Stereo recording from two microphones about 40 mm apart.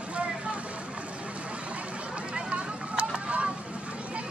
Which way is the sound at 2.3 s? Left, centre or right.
Right.